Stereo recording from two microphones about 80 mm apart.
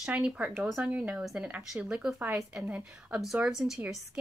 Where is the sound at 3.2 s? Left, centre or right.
Centre.